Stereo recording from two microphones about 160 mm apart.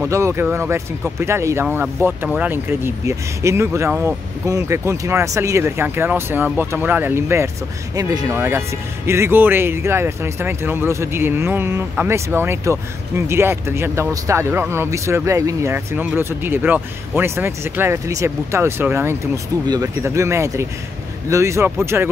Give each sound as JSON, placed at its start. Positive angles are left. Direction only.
{"t": 0.0, "sound": "speech", "side_deg": -15}